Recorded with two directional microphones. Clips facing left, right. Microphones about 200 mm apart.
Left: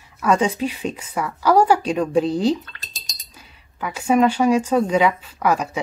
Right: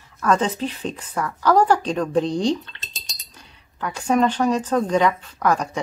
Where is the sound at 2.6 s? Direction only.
25° right (ahead or behind).